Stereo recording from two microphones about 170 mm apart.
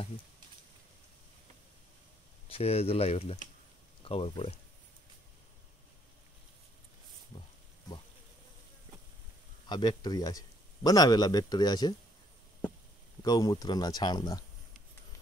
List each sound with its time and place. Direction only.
2.4 s speech: 35° left (ahead or behind)
7.3 s a sound: 25° left (ahead or behind)
9.7 s speech: 25° left (ahead or behind)
13.2 s speech: 20° left (ahead or behind)